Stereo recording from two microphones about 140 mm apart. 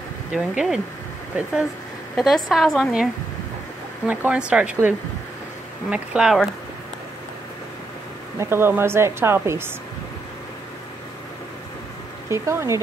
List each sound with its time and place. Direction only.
0.3 s a woman's voice: 5° right (ahead or behind)
4.1 s a woman's voice: 10° right (ahead or behind)
5.9 s a woman's voice: 5° right (ahead or behind)
8.4 s a woman's voice: 15° right (ahead or behind)
12.3 s speech: 20° right (ahead or behind)